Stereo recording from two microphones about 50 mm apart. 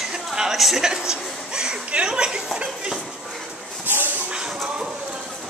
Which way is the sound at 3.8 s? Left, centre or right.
Right.